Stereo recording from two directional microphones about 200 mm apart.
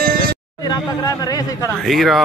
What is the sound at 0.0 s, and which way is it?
Music, 50° right (ahead or behind).